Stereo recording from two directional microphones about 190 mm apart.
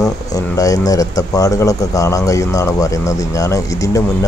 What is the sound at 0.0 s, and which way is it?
Speech, 20° left (ahead or behind).